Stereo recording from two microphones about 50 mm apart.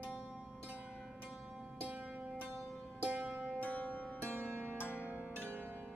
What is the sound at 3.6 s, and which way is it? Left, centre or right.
Music, left.